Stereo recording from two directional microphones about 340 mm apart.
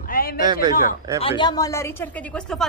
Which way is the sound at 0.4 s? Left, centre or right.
Centre.